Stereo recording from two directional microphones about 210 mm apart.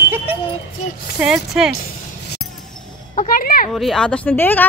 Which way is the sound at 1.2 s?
5° right (ahead or behind).